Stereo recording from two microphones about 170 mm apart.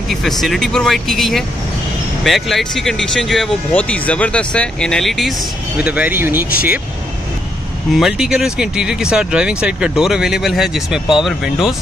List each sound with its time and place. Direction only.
0.1 s speech: centre (ahead or behind)
7.9 s speech: 5° right (ahead or behind)